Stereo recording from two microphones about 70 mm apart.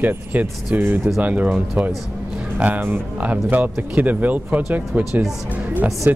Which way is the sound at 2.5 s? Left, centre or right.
Right.